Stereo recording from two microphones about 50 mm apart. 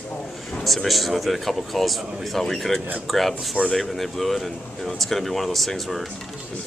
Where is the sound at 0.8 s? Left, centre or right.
Centre.